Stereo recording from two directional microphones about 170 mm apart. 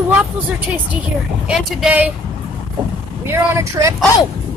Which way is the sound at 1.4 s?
5° right (ahead or behind).